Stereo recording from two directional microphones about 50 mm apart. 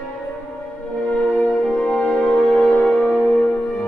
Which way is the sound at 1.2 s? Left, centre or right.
Centre.